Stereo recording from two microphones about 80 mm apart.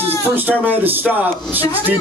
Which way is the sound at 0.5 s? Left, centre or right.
Right.